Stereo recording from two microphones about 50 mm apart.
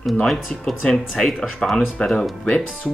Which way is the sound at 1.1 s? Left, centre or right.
Centre.